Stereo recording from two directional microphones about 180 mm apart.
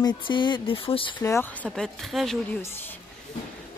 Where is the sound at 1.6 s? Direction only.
Centre (ahead or behind).